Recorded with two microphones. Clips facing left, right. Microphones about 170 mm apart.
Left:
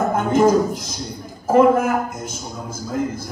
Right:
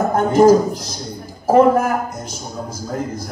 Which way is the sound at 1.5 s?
35° right (ahead or behind).